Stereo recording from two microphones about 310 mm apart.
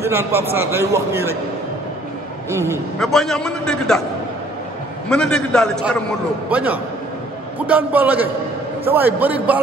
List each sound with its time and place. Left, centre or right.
0.0 s a man's voice: centre
2.5 s a man's voice: centre
5.1 s a man's voice: centre